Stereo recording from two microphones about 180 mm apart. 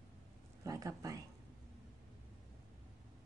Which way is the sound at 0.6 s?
20° right (ahead or behind).